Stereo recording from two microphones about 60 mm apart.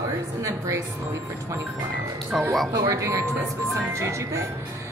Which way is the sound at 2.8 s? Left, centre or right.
Right.